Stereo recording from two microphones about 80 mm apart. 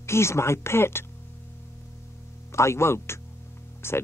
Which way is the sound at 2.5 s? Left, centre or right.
Left.